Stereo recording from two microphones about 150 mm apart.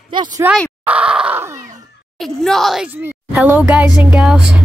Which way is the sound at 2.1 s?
Centre (ahead or behind).